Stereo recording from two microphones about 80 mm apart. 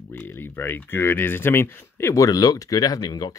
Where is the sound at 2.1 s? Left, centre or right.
Left.